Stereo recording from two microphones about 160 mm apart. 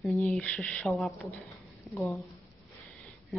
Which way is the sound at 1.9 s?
Centre (ahead or behind).